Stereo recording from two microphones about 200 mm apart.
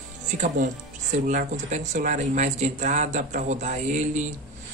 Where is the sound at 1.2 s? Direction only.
40° right (ahead or behind).